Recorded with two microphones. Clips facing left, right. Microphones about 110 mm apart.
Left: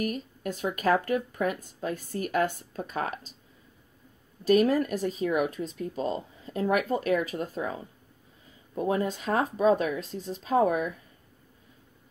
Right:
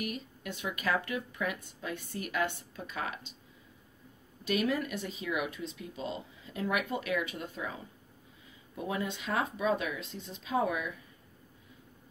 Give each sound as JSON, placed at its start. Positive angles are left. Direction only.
{"t": 0.0, "sound": "speech", "side_deg": 40}
{"t": 4.5, "sound": "speech", "side_deg": 40}
{"t": 8.7, "sound": "speech", "side_deg": 40}